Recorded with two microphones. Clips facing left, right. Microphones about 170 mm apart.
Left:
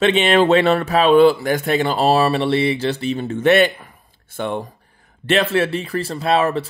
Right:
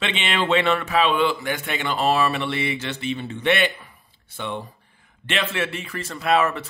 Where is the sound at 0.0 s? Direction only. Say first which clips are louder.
Left 11 dB; 40° left (ahead or behind).